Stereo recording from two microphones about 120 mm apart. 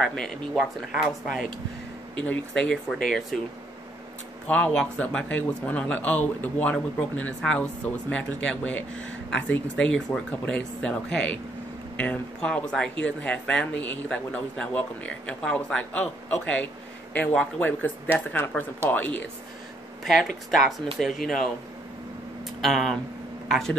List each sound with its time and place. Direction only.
0.0 s speech: 5° left (ahead or behind)
2.1 s speech: 10° left (ahead or behind)
4.5 s a man's voice: 10° left (ahead or behind)
20.2 s speech: centre (ahead or behind)
22.6 s speech: centre (ahead or behind)